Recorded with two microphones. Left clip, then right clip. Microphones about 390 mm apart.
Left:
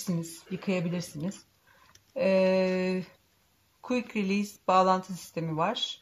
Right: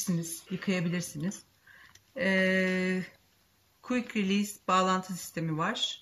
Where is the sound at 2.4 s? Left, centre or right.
Centre.